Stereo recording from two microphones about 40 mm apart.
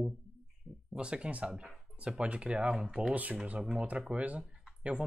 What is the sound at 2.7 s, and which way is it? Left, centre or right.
Speech, centre.